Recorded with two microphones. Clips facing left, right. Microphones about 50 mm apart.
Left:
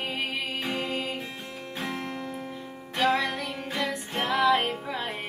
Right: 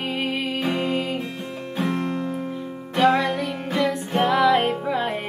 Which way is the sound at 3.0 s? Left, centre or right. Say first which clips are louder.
Right 6 dB; right.